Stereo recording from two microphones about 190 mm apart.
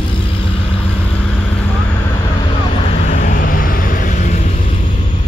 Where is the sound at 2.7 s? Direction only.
35° left (ahead or behind).